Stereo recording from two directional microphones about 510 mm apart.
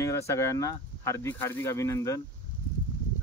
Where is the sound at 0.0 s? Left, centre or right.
Centre.